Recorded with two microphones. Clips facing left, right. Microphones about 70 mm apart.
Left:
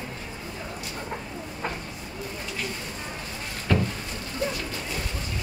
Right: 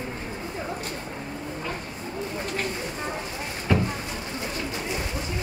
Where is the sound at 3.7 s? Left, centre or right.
Centre.